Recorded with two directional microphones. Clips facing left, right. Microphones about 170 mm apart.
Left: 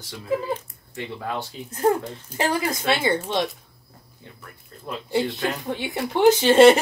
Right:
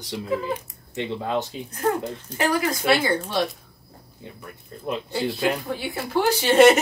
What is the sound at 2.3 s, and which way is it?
Speech, 25° left (ahead or behind).